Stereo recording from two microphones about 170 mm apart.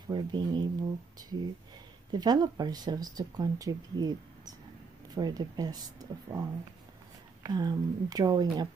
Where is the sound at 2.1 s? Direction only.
25° right (ahead or behind).